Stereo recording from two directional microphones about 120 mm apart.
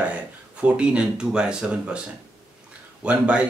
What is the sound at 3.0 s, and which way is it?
Speech, 10° right (ahead or behind).